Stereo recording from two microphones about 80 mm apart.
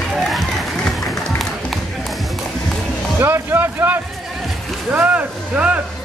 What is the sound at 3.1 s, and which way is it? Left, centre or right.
Speech, right.